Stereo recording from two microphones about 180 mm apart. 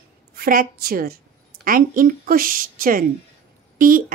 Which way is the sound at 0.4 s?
55° right (ahead or behind).